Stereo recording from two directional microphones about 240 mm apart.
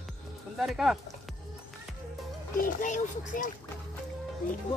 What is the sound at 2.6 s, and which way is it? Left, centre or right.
Speech, left.